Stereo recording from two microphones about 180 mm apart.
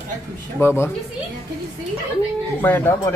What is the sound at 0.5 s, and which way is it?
Speech, 15° left (ahead or behind).